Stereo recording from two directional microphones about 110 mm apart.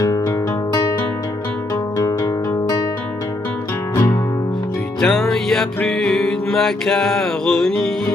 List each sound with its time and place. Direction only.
2.0 s music: 35° left (ahead or behind)
5.0 s music: 5° left (ahead or behind)